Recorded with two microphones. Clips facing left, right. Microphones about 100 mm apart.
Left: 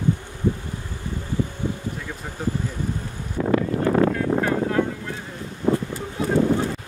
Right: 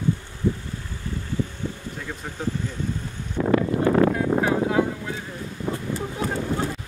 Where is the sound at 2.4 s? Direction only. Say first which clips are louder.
Left 2 dB; 5° left (ahead or behind).